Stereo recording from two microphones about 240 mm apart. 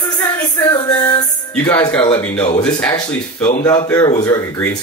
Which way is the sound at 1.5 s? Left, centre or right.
Centre.